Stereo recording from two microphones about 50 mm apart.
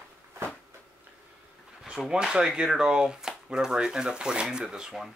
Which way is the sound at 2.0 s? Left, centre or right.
Centre.